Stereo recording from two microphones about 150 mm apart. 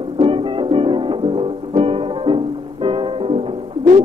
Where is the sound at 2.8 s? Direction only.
35° right (ahead or behind).